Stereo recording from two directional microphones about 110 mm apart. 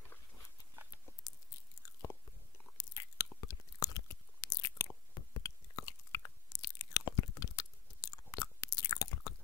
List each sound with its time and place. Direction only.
1.3 s biting: 35° left (ahead or behind)
2.8 s chewing: 35° left (ahead or behind)